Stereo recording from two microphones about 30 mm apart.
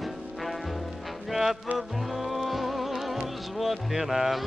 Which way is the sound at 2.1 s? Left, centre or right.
Centre.